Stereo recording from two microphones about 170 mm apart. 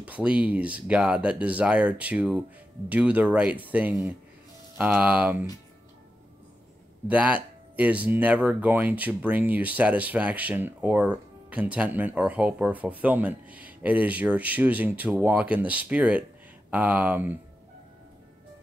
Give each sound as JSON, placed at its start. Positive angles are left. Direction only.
{"t": 0.0, "sound": "speech", "side_deg": -5}
{"t": 7.1, "sound": "speech", "side_deg": -10}